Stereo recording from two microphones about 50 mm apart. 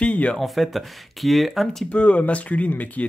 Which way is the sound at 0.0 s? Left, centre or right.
Left.